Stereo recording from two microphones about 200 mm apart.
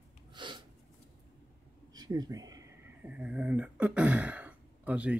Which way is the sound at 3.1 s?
5° right (ahead or behind).